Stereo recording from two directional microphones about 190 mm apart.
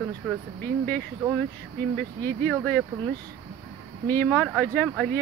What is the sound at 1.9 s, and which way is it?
Speech, 5° left (ahead or behind).